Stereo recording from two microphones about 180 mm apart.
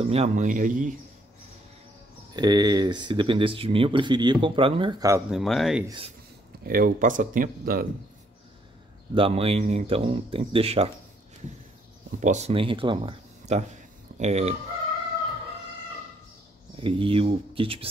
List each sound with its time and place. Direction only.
0.0 s speech: 35° right (ahead or behind)
2.3 s speech: 25° right (ahead or behind)
5.3 s speech: centre (ahead or behind)
5.9 s speech: 30° right (ahead or behind)
6.6 s speech: 55° right (ahead or behind)
9.1 s speech: 30° right (ahead or behind)
12.2 s speech: 40° right (ahead or behind)
16.7 s speech: 30° right (ahead or behind)